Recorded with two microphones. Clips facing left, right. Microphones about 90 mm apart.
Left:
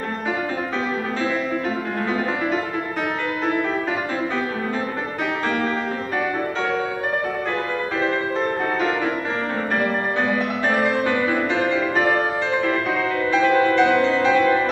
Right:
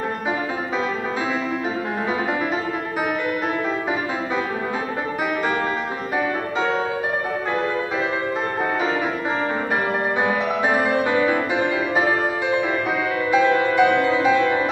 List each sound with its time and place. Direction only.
10.2 s music: 10° right (ahead or behind)
13.2 s music: 10° right (ahead or behind)